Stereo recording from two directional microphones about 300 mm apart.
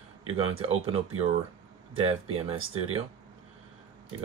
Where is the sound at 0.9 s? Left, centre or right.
Centre.